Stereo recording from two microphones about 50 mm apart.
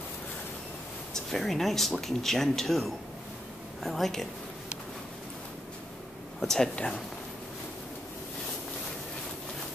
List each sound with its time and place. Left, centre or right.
1.1 s speech: centre
6.4 s speech: centre
6.7 s speech: left